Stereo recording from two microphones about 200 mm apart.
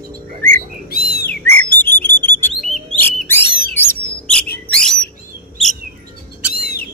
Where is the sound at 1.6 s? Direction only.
10° left (ahead or behind).